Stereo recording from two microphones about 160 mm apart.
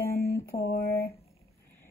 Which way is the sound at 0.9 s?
20° left (ahead or behind).